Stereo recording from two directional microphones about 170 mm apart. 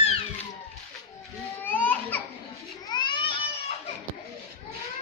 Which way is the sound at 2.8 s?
25° left (ahead or behind).